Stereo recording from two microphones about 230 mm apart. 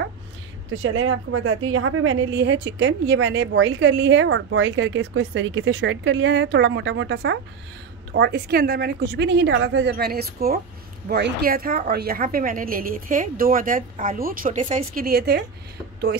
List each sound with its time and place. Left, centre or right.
0.8 s a woman's voice: right
14.6 s speech: right
15.0 s a woman's voice: right